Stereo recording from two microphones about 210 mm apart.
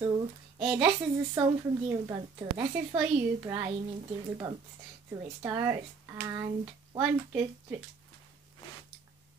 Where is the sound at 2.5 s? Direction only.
10° right (ahead or behind).